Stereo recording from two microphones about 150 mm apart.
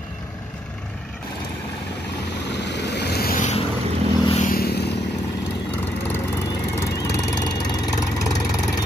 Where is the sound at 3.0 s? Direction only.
90° left.